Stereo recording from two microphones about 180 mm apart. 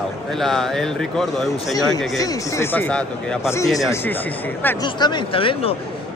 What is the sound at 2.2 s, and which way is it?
A woman's voice, 20° left (ahead or behind).